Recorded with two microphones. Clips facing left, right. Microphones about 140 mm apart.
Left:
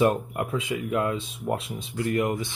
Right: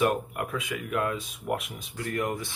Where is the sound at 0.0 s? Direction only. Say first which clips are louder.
Left 3 dB; 25° left (ahead or behind).